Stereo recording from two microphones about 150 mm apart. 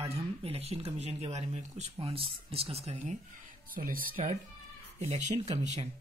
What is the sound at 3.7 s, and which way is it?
Speech, 65° right (ahead or behind).